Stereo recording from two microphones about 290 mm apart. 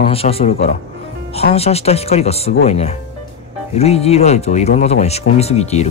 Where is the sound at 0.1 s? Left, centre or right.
Centre.